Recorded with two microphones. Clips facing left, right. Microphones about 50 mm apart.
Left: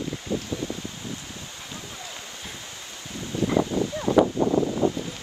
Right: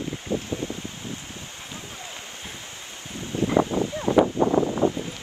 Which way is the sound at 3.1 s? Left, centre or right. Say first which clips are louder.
Right 2 dB; right.